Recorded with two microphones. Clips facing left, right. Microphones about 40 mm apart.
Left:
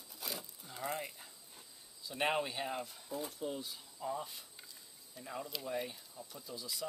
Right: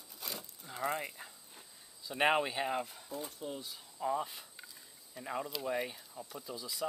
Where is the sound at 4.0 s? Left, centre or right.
Right.